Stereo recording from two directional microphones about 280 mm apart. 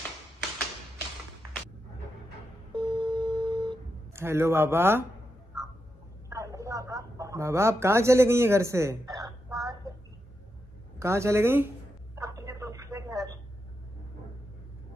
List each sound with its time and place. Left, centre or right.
2.7 s a sound: centre
6.2 s a woman's voice: centre
11.0 s a woman's voice: centre
12.2 s telephone: centre